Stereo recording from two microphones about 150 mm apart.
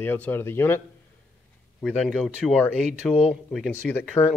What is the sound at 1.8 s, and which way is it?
Speech, 5° left (ahead or behind).